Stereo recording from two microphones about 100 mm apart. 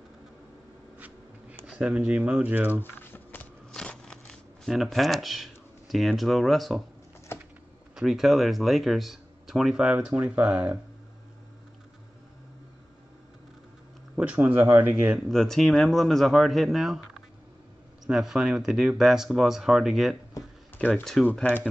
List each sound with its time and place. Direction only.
0.9 s a sound: 15° right (ahead or behind)
1.7 s speech: 10° right (ahead or behind)
2.7 s a sound: 20° left (ahead or behind)
3.7 s shuffling cards: 5° left (ahead or behind)
7.3 s typing: 25° left (ahead or behind)
7.9 s speech: 5° right (ahead or behind)
14.1 s speech: 10° right (ahead or behind)
14.5 s speech: 20° right (ahead or behind)
15.2 s speech: centre (ahead or behind)
18.0 s speech: 5° right (ahead or behind)
21.3 s speech: 15° left (ahead or behind)